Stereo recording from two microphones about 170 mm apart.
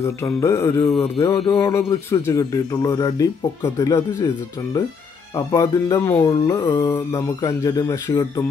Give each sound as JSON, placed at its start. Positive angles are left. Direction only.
{"t": 0.0, "sound": "mantra", "side_deg": 15}
{"t": 1.2, "sound": "speech", "side_deg": 30}
{"t": 1.7, "sound": "speech", "side_deg": 15}
{"t": 5.3, "sound": "speech", "side_deg": 20}